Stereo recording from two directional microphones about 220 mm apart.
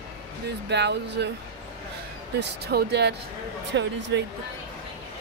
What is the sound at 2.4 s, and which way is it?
Speech, 50° right (ahead or behind).